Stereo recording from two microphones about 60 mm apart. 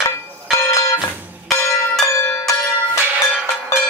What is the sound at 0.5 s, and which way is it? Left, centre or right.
Bell, left.